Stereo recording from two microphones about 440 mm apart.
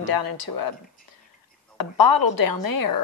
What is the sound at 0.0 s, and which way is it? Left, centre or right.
Speech, left.